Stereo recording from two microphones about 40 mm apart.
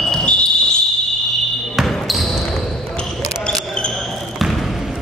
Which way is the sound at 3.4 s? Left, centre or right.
Left.